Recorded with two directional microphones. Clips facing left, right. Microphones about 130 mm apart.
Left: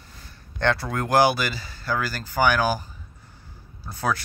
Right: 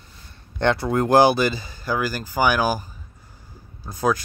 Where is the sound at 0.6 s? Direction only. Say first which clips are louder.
Right 4 dB; 20° right (ahead or behind).